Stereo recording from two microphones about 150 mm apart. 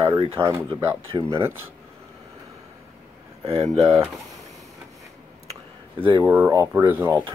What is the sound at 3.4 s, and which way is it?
Speech, 40° right (ahead or behind).